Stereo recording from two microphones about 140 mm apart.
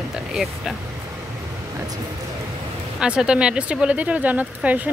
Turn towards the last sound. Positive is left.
turn(degrees=-10)  # may be behind; listen again after turning